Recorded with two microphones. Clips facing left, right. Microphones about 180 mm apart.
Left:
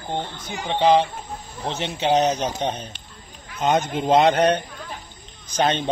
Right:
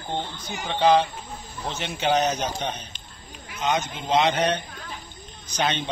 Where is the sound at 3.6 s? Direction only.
55° left (ahead or behind).